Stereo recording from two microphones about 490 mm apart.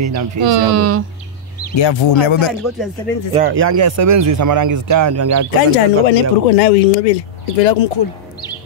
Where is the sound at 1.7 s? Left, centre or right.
Left.